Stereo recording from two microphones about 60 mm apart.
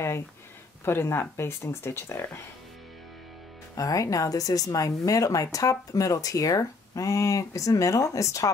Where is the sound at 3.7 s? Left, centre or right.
Left.